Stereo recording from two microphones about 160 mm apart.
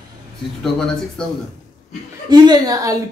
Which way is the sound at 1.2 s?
5° left (ahead or behind).